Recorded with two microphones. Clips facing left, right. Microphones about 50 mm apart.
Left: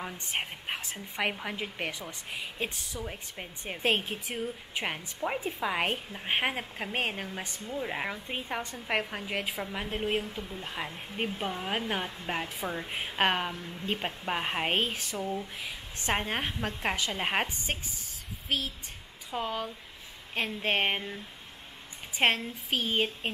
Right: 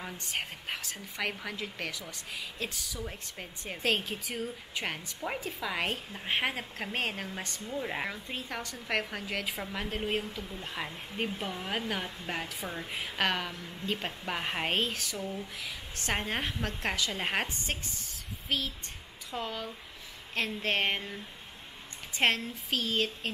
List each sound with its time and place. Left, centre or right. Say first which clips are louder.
0.3 s a woman's voice: left 2 dB; left
3.0 s speech: left 3 dB; centre
5.4 s a woman's voice: left 3 dB; left
7.7 s speech: left 1 dB; centre
8.3 s a woman's voice: left 3 dB; left